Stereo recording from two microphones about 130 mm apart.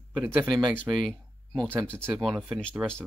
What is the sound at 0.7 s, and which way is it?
Speech, 10° left (ahead or behind).